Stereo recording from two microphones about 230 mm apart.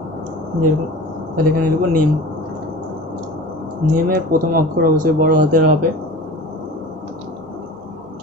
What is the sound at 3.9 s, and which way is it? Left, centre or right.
Speech, right.